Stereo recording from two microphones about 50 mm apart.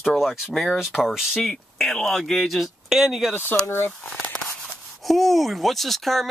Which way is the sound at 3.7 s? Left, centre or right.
Left.